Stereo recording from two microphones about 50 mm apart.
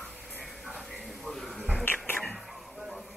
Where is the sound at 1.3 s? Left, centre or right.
Centre.